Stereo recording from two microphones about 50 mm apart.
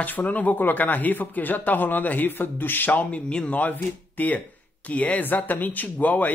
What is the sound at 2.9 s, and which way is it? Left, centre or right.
Speech, left.